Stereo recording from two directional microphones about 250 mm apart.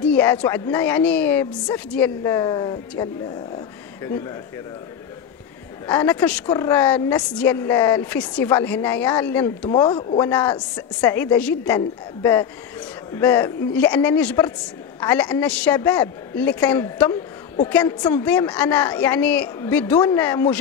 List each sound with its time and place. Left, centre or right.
0.0 s a woman's voice: centre
5.9 s a woman's voice: centre
9.7 s a man's voice: centre
10.6 s a woman's voice: centre